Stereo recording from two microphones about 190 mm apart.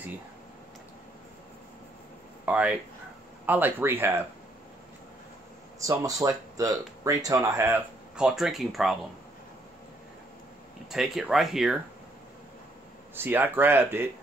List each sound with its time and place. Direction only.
2.4 s speech: 5° right (ahead or behind)
5.8 s speech: 20° right (ahead or behind); by 8.9 s centre (ahead or behind)
10.9 s speech: centre (ahead or behind)
13.1 s speech: 10° right (ahead or behind)